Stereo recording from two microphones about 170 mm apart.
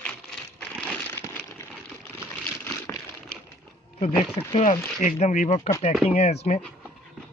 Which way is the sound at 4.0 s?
40° left (ahead or behind).